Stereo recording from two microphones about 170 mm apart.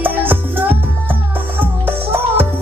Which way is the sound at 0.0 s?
10° right (ahead or behind).